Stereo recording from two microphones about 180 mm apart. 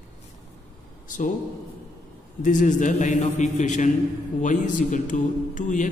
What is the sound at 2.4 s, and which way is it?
A man's voice, 45° left (ahead or behind).